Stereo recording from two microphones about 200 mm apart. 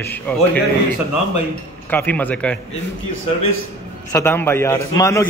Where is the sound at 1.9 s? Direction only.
10° left (ahead or behind).